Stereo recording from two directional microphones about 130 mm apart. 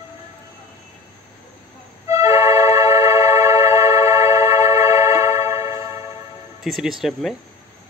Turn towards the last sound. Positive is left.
turn(degrees=0)  # may be behind; listen again after turning